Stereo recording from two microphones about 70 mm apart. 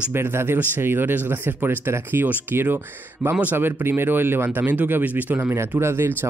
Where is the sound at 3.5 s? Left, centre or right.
Right.